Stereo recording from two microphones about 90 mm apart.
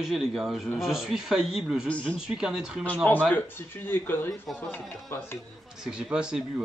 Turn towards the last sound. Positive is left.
turn(degrees=-10)  # may be behind; listen again after turning